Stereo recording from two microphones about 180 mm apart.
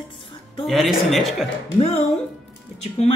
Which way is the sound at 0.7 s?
Centre (ahead or behind).